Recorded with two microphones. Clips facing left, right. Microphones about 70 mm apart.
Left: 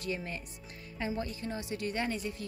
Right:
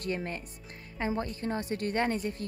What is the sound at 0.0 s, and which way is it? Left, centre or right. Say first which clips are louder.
A woman's voice: right 3 dB; right.